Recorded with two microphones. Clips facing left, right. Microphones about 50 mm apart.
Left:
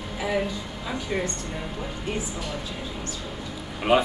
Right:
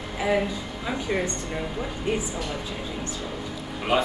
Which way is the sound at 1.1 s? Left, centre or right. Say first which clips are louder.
Right 1 dB; centre.